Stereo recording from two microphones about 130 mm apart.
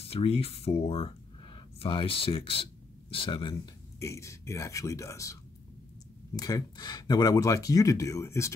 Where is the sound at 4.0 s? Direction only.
25° left (ahead or behind).